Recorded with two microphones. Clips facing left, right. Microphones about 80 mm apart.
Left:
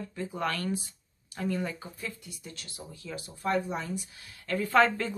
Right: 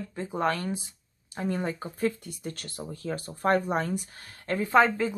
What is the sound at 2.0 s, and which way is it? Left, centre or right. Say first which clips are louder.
Speech: right 13 dB; right.